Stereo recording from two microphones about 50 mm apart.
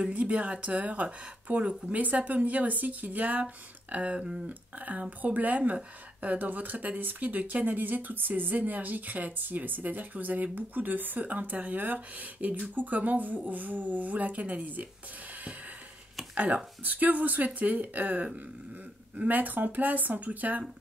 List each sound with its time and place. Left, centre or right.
0.0 s speech: right
4.5 s speech: right
16.3 s speech: right